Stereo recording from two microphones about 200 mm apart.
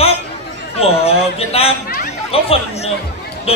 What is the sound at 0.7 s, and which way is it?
A man's voice, 30° left (ahead or behind).